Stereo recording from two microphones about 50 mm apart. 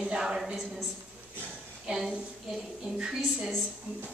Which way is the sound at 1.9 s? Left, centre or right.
Centre.